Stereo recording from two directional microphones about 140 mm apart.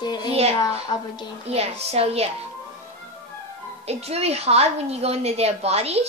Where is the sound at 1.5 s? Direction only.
45° right (ahead or behind).